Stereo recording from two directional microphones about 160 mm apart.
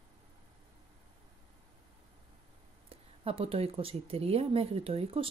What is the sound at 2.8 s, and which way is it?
Speech, 35° right (ahead or behind).